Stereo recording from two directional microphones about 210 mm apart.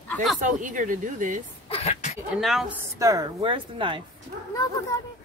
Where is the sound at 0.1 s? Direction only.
Centre (ahead or behind).